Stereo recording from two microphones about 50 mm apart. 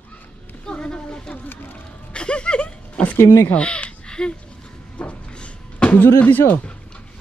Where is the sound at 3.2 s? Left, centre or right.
Left.